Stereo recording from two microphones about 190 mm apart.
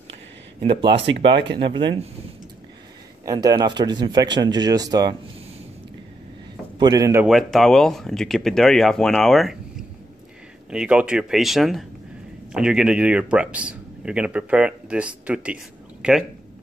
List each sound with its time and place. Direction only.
0.6 s speech: 25° right (ahead or behind)
1.0 s speech: 70° right (ahead or behind)
1.6 s speech: 25° right (ahead or behind)
3.3 s speech: 20° right (ahead or behind)
6.8 s a man's voice: 20° right (ahead or behind)
7.2 s speech: centre (ahead or behind)